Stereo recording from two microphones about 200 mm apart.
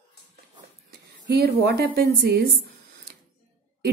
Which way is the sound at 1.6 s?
55° right (ahead or behind).